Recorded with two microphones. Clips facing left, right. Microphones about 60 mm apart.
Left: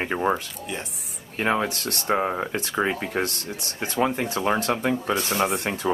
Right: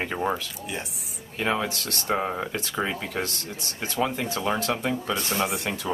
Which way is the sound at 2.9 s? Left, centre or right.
Left.